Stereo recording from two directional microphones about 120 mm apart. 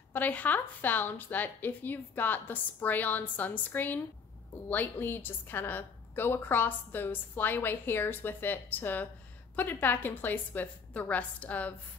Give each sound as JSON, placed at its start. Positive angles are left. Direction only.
{"t": 0.1, "sound": "a woman's voice", "side_deg": 15}